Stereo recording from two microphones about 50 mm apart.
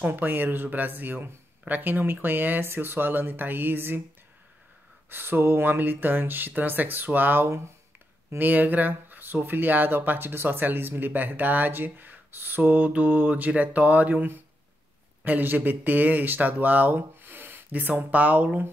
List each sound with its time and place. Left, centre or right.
0.0 s speech: right
5.1 s speech: right
7.4 s speech: right
8.4 s speech: right
12.7 s speech: right
15.2 s speech: right